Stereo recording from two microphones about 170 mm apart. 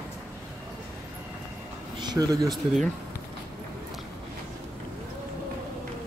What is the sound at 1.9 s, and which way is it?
Speech, 25° right (ahead or behind).